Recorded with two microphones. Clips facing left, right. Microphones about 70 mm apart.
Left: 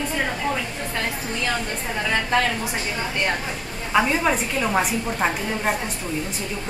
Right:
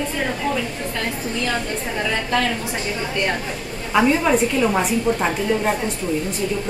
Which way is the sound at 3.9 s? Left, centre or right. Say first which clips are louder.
Right 3 dB; centre.